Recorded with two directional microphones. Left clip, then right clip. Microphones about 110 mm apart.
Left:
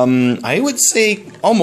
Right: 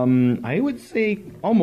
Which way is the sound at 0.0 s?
30° left (ahead or behind).